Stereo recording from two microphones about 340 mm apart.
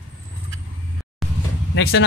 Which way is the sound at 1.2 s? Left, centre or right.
Centre.